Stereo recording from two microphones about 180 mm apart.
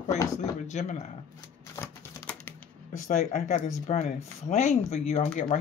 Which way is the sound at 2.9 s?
45° left (ahead or behind).